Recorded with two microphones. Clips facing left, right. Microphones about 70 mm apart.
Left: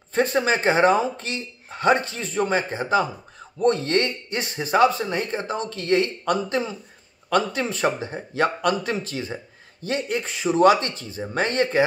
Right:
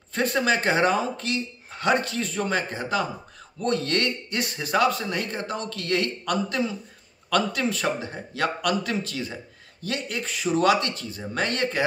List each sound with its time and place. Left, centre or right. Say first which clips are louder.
0.1 s speech: left 2 dB; left